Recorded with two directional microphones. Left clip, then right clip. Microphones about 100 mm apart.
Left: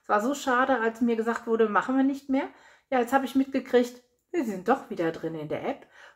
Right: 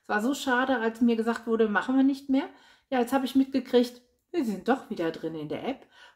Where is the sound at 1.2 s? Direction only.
10° right (ahead or behind).